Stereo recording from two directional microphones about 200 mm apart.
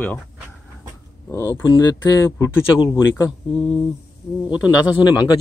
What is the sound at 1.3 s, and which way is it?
Speech, 15° left (ahead or behind).